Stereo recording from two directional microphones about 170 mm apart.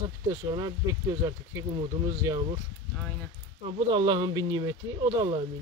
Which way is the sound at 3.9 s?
30° right (ahead or behind).